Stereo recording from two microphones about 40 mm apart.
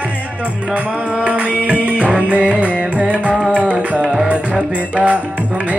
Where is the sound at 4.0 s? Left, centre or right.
Centre.